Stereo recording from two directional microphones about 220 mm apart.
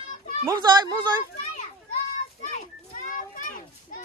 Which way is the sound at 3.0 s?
35° left (ahead or behind).